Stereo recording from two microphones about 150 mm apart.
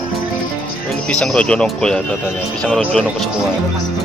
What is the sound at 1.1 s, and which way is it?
Speech, 5° left (ahead or behind).